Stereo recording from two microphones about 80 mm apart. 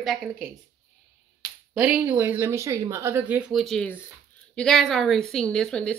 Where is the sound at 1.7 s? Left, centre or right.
Centre; by 3.2 s right.